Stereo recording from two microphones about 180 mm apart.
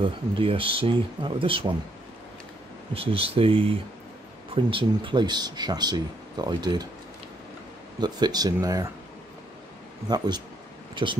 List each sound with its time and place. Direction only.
0.0 s speech: 30° right (ahead or behind)
2.9 s speech: 30° right (ahead or behind)
8.0 s speech: 25° right (ahead or behind)
10.0 s speech: 25° right (ahead or behind)